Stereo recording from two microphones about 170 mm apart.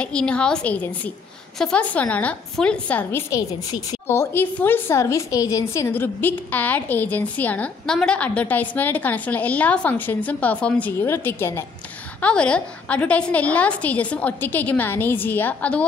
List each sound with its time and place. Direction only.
0.0 s a woman's voice: 5° left (ahead or behind)